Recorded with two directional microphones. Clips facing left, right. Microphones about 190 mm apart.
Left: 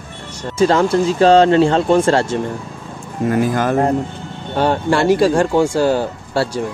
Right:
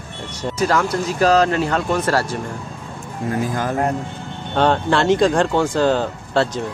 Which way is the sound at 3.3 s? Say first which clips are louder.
Left 5 dB; 75° left (ahead or behind).